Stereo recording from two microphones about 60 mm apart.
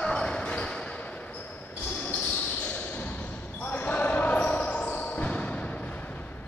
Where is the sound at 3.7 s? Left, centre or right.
Left.